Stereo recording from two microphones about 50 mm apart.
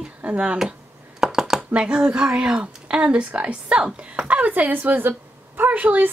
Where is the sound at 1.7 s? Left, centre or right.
Centre.